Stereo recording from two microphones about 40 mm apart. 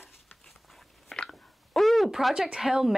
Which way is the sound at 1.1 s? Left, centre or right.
Centre.